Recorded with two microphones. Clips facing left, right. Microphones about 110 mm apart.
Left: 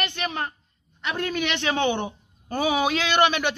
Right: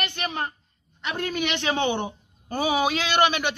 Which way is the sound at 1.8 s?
25° right (ahead or behind).